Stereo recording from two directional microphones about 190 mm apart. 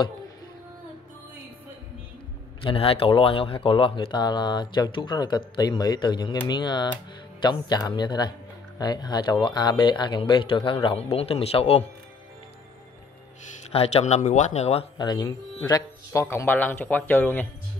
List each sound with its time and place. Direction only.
2.6 s speech: 30° left (ahead or behind)
13.7 s speech: 35° left (ahead or behind); by 17.5 s 10° left (ahead or behind)